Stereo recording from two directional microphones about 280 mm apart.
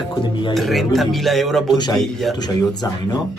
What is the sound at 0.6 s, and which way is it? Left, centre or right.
Speech, centre.